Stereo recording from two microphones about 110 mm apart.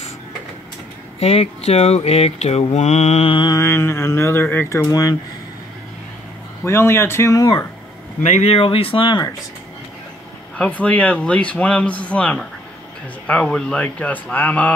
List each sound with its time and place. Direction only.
1.2 s mantra: 65° left (ahead or behind); by 3.3 s 85° left
3.3 s mantra: 45° left (ahead or behind)
3.5 s speech: 25° left (ahead or behind)
6.6 s speech: 25° left (ahead or behind)
8.2 s speech: 80° left; by 9.2 s 50° left (ahead or behind)
10.5 s speech: 10° left (ahead or behind)